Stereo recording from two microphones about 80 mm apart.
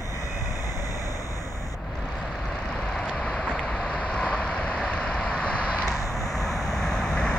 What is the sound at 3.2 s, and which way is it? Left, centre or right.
Vehicle, centre.